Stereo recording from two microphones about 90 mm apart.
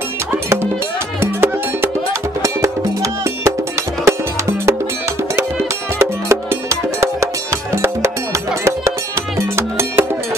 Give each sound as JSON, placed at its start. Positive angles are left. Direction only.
{"t": 1.2, "sound": "music", "side_deg": -25}
{"t": 2.4, "sound": "music", "side_deg": -35}
{"t": 5.9, "sound": "music", "side_deg": -30}